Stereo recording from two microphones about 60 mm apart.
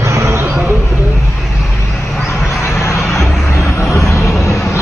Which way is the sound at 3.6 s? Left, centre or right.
Left.